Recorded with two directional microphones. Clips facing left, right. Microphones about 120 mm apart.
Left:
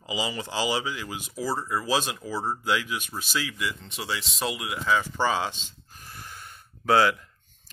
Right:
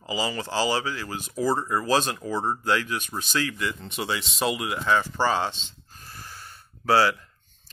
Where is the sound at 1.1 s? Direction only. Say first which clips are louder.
Right 4 dB; 45° right (ahead or behind).